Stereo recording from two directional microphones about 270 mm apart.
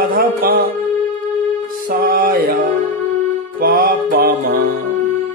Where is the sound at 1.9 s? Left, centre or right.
Right.